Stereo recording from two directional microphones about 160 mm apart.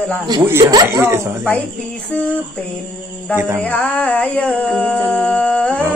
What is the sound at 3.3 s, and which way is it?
Speech, 15° right (ahead or behind).